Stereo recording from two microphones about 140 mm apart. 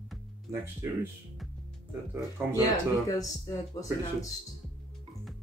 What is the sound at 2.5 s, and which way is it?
Speech, 25° left (ahead or behind).